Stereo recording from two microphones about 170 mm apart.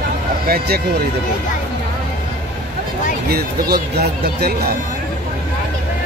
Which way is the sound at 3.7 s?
70° right (ahead or behind).